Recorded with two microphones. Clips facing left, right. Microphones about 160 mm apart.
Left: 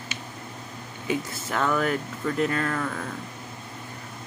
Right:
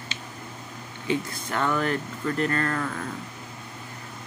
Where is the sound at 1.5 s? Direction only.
Centre (ahead or behind).